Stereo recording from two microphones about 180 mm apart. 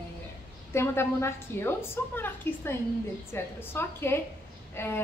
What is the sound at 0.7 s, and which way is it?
A woman's voice, 15° left (ahead or behind).